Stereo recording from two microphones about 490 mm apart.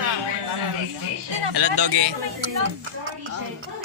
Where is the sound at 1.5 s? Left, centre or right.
Right.